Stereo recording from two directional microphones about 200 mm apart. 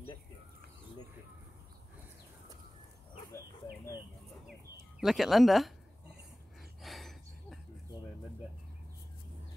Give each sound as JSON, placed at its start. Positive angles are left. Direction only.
{"t": 3.6, "sound": "chicken", "side_deg": 20}
{"t": 5.0, "sound": "speech", "side_deg": 0}
{"t": 6.8, "sound": "a sound", "side_deg": 0}